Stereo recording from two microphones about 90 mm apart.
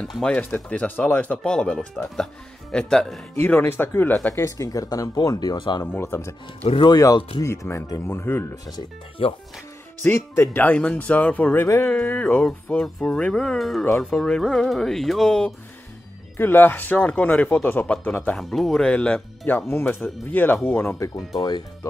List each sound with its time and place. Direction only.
0.0 s speech: 5° left (ahead or behind)
3.3 s speech: 20° left (ahead or behind)
4.3 s speech: 35° left (ahead or behind); by 5.9 s 55° left (ahead or behind)
6.9 s speech: 40° left (ahead or behind)
7.4 s speech: 30° left (ahead or behind)
9.2 s speech: 90° left
10.3 s speech: 20° left (ahead or behind)
11.6 s speech: 30° left (ahead or behind)
11.9 s speech: 15° left (ahead or behind)
14.4 s music: 5° left (ahead or behind)
16.3 s speech: 25° left (ahead or behind)
18.3 s speech: centre (ahead or behind); by 21.0 s 20° left (ahead or behind)
21.4 s speech: 50° left (ahead or behind)